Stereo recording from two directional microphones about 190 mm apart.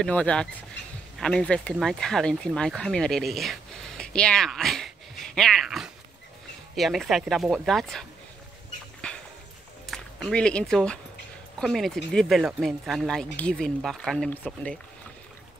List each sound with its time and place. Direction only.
0.0 s speech: 5° left (ahead or behind)
9.0 s a sound: 5° left (ahead or behind)
9.8 s speech: centre (ahead or behind)